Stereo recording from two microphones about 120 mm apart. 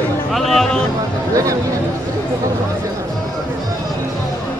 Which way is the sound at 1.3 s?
30° right (ahead or behind).